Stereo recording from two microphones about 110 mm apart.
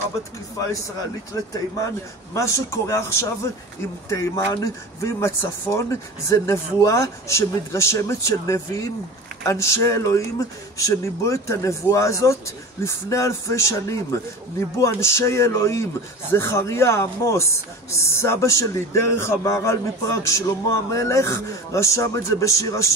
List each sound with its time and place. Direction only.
2.3 s a man's voice: 25° left (ahead or behind)